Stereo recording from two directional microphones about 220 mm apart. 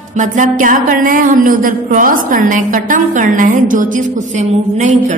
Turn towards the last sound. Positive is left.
turn(degrees=-30)  # may be behind; listen again after turning